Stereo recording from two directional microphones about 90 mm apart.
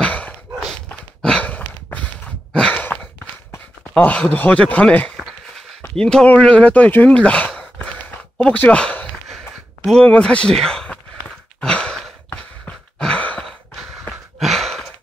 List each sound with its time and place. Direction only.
0.0 s a sound: 15° left (ahead or behind)
0.8 s sigh: 15° left (ahead or behind)
2.8 s sigh: 20° left (ahead or behind)
3.9 s speech: 15° left (ahead or behind)
8.5 s a sound: 15° left (ahead or behind)
10.0 s sigh: 15° left (ahead or behind)
14.4 s sigh: centre (ahead or behind)